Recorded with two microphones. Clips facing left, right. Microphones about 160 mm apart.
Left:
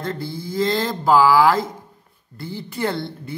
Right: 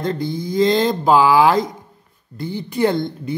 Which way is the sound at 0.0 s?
20° right (ahead or behind).